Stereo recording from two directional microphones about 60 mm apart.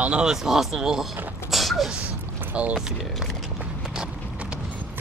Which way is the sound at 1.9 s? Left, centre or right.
Right.